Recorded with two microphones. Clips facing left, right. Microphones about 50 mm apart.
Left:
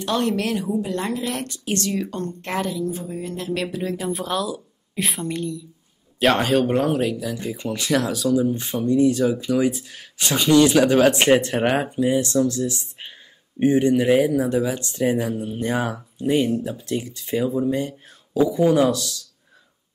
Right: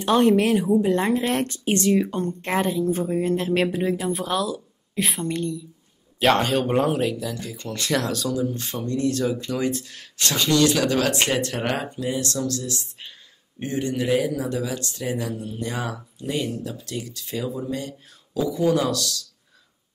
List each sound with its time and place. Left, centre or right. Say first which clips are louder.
0.0 s speech: right 5 dB; right
2.5 s speech: right 2 dB; right
2.9 s speech: right 7 dB; right
3.9 s a woman's voice: even; centre
8.4 s speech: left 5 dB; centre